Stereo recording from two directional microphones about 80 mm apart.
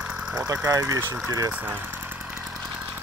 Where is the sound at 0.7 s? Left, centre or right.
Right.